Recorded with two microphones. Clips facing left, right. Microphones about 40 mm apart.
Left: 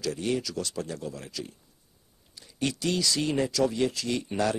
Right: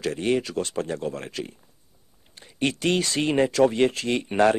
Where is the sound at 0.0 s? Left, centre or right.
Right.